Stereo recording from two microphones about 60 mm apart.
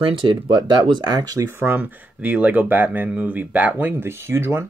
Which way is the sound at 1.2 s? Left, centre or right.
Right.